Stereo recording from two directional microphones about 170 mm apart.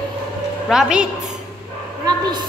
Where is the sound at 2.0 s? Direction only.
25° right (ahead or behind).